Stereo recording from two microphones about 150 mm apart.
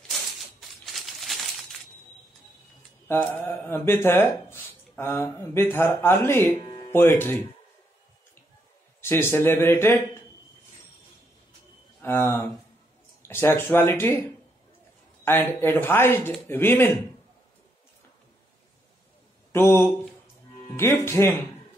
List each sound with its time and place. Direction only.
0.1 s coin: centre (ahead or behind)
3.1 s speech: 10° left (ahead or behind)
6.6 s music: 30° left (ahead or behind)
6.9 s speech: 15° left (ahead or behind)
9.0 s speech: 15° left (ahead or behind)
12.0 s speech: 15° left (ahead or behind)
13.2 s a sound: 15° left (ahead or behind)
13.6 s speech: 15° left (ahead or behind)
15.2 s speech: 15° left (ahead or behind)
19.5 s speech: 15° left (ahead or behind)